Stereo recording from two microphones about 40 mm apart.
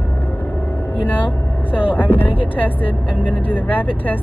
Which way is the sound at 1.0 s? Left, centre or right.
Left.